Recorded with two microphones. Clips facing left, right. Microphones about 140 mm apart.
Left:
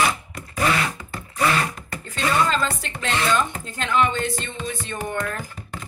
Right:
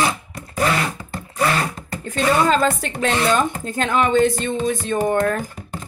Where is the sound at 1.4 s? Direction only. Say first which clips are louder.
Right 2 dB; 30° right (ahead or behind).